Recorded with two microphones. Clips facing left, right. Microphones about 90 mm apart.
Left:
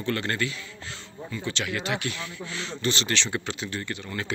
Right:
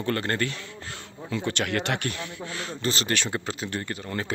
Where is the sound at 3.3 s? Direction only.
35° right (ahead or behind).